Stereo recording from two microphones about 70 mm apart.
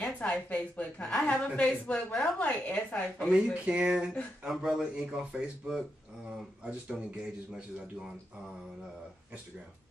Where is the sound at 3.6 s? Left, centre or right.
Centre.